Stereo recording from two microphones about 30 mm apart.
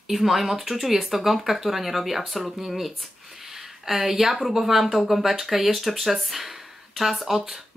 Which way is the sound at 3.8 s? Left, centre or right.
Centre.